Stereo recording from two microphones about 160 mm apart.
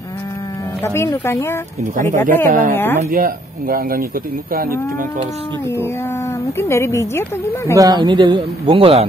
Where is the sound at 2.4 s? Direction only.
55° right (ahead or behind).